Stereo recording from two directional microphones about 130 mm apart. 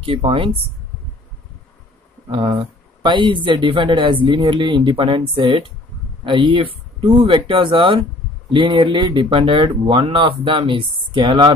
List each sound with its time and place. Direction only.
0.0 s speech: 45° right (ahead or behind)
2.2 s speech: 45° right (ahead or behind)